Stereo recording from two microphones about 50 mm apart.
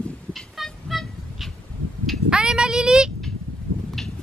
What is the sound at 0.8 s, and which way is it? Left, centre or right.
Goose, centre.